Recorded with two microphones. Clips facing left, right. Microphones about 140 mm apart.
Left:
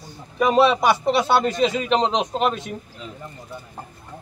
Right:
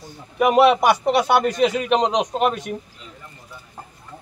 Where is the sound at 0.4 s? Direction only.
15° right (ahead or behind).